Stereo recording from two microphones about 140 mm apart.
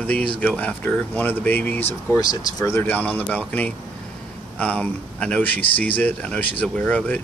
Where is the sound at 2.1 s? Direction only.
25° left (ahead or behind); by 7.2 s 10° left (ahead or behind).